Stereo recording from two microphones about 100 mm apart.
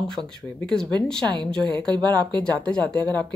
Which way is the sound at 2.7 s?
10° left (ahead or behind).